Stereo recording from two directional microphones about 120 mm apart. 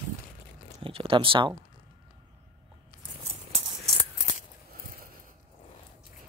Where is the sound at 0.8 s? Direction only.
50° right (ahead or behind).